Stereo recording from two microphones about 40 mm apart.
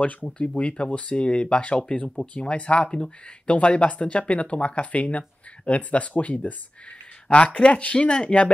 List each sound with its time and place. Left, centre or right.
0.0 s speech: left
7.2 s speech: left